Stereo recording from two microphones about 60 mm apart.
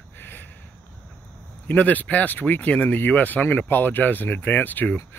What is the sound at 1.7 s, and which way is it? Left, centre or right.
Speech, left.